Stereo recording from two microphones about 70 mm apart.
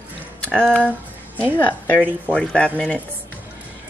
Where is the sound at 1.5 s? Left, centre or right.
Left.